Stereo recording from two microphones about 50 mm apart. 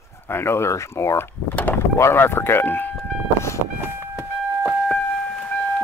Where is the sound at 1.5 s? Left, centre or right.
Left.